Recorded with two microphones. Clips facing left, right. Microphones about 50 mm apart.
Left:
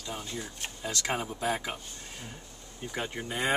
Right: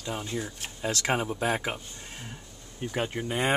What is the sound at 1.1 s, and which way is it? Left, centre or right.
Speech, right.